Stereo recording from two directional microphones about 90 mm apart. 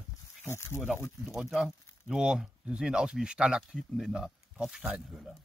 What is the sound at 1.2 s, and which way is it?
Speech, 5° right (ahead or behind).